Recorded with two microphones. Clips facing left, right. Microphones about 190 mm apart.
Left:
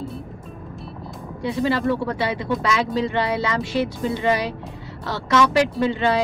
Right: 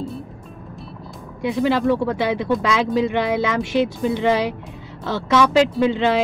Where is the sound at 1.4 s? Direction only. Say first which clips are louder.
Right 3 dB; 20° right (ahead or behind).